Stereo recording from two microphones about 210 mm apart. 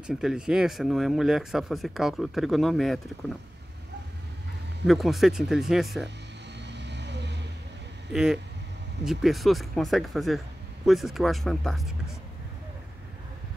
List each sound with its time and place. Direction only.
0.0 s speech: centre (ahead or behind)
4.8 s speech: centre (ahead or behind)
6.6 s vehicle: 55° right (ahead or behind)
8.1 s speech: centre (ahead or behind)